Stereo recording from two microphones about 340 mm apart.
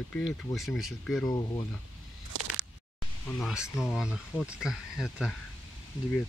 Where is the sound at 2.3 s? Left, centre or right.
Right.